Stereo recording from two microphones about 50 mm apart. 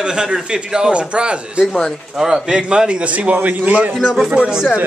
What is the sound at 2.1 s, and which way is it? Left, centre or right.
A man's voice, centre.